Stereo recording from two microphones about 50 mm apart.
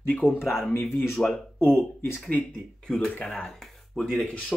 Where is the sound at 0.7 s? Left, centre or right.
Left.